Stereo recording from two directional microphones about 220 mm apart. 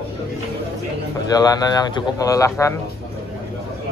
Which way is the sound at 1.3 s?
15° left (ahead or behind).